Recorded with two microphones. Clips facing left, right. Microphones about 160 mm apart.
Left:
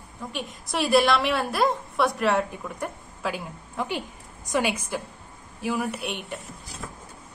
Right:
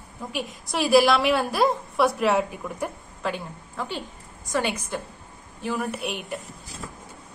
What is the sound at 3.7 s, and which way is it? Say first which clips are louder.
A woman's voice: left 3 dB; 15° left (ahead or behind).